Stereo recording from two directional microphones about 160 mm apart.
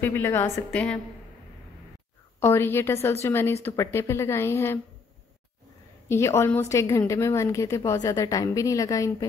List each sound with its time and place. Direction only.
0.0 s speech: 15° left (ahead or behind)
2.4 s speech: 15° left (ahead or behind)
6.0 s a woman's voice: 20° left (ahead or behind)